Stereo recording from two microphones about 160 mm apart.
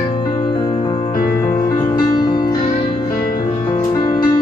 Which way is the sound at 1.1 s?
65° left (ahead or behind).